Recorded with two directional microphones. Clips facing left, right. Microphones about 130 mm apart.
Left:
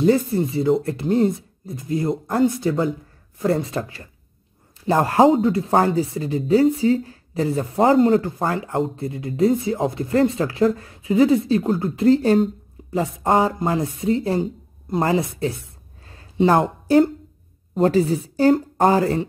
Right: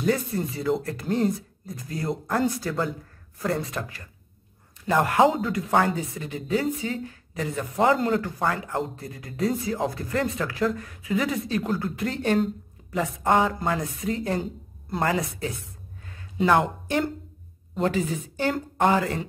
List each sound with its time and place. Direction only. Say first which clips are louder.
0.0 s speech: left 7 dB; 25° left (ahead or behind)